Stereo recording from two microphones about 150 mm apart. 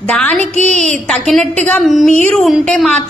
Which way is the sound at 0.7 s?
50° right (ahead or behind).